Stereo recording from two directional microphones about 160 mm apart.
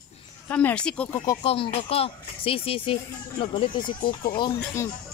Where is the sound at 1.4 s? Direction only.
35° left (ahead or behind).